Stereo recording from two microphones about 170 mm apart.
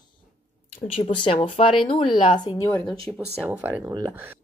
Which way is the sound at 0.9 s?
30° left (ahead or behind).